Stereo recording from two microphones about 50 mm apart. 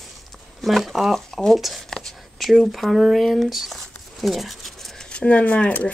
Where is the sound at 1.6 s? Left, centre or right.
Centre.